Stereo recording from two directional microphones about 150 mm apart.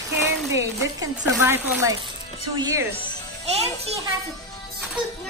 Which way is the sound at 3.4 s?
45° right (ahead or behind).